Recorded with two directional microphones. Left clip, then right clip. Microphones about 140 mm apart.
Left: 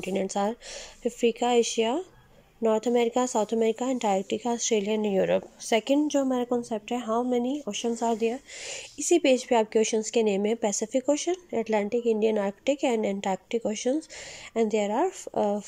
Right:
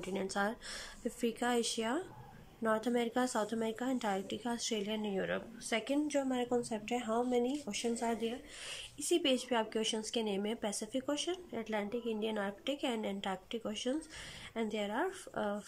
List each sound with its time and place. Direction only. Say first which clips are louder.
0.0 s speech: left 9 dB; 25° left (ahead or behind)
6.0 s speech: left 9 dB; 25° left (ahead or behind)